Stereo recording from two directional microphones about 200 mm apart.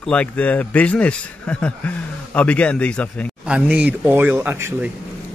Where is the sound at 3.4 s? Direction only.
5° right (ahead or behind).